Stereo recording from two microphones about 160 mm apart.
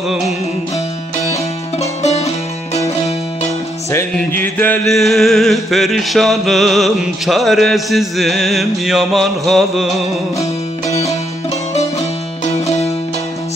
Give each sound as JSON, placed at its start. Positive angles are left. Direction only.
{"t": 2.0, "sound": "music", "side_deg": 45}
{"t": 3.9, "sound": "music", "side_deg": 15}